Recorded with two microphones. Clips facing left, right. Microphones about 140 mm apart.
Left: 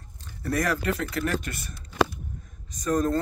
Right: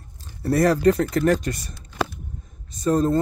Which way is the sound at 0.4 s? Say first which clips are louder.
Right 8 dB; 35° right (ahead or behind).